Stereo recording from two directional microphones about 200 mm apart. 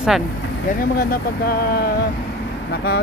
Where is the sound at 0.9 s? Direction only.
50° left (ahead or behind).